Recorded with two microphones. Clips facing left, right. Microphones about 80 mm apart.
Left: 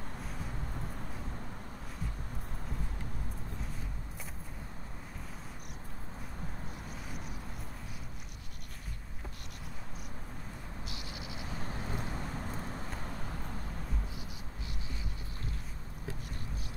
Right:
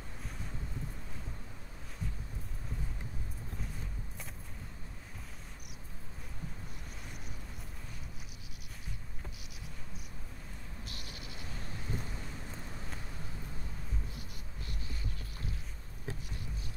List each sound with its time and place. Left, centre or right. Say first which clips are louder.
10.9 s cricket: left 4 dB; right
11.6 s boat: left 2 dB; left